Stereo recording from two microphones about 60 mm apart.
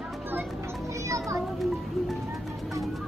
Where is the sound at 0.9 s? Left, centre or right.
Right.